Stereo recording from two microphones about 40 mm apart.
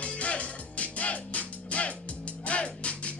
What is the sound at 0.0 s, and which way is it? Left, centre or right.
Music, left.